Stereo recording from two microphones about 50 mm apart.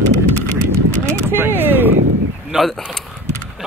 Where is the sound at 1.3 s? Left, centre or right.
Right.